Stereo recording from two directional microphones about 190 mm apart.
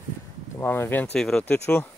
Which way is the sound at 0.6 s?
10° left (ahead or behind).